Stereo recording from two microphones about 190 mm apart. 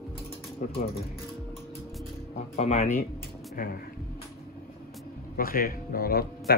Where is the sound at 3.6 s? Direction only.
45° left (ahead or behind).